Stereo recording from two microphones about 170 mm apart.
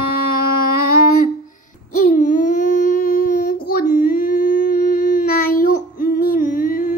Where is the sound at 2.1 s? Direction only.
50° left (ahead or behind).